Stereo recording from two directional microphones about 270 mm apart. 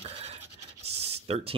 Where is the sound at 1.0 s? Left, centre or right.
Right.